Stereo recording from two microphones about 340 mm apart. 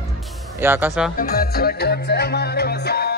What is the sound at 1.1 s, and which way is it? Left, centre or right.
Music, left.